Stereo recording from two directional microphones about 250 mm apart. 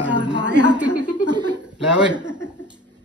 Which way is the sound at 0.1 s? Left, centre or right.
Right.